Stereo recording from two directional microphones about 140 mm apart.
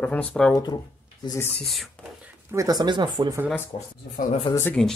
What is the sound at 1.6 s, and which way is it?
Speech, centre (ahead or behind).